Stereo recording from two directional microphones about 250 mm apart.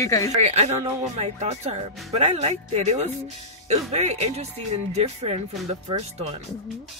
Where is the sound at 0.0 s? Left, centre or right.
Centre.